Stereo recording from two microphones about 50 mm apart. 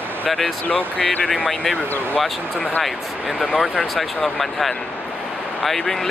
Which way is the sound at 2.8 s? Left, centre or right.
Centre.